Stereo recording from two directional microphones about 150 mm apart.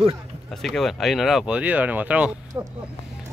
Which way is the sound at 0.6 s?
Centre (ahead or behind).